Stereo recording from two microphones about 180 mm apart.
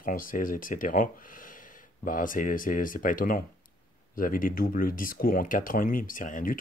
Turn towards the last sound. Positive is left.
turn(degrees=50)  # may be behind; listen again after turning